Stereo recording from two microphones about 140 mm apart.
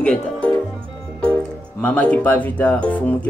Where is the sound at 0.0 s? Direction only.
5° left (ahead or behind).